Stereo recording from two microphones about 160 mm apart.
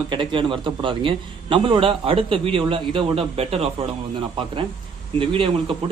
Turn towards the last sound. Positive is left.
turn(degrees=-35)  # may be behind; listen again after turning